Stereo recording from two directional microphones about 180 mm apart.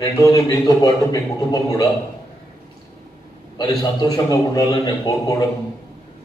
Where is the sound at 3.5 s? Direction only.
25° left (ahead or behind).